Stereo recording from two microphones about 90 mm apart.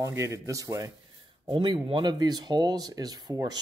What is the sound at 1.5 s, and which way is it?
Speech, 60° right (ahead or behind).